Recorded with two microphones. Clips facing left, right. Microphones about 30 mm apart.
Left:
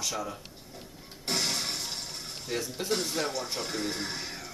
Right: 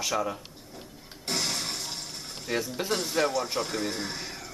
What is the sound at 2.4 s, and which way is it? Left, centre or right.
Speech, centre.